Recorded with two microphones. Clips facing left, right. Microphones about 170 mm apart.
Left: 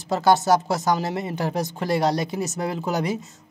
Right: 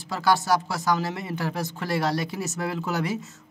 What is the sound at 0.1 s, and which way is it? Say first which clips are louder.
Speech: left 5 dB; 20° left (ahead or behind).